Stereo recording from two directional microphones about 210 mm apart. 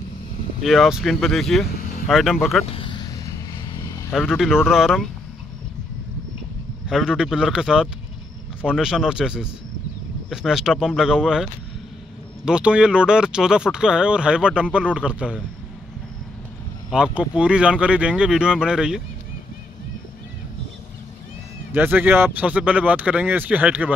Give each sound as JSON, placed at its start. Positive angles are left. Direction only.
{"t": 0.6, "sound": "speech", "side_deg": 0}
{"t": 2.7, "sound": "a sound", "side_deg": 25}
{"t": 3.7, "sound": "vehicle", "side_deg": 15}
{"t": 4.3, "sound": "speech", "side_deg": -5}
{"t": 6.9, "sound": "speech", "side_deg": -5}
{"t": 12.4, "sound": "speech", "side_deg": -5}
{"t": 16.9, "sound": "speech", "side_deg": -5}
{"t": 21.7, "sound": "speech", "side_deg": -10}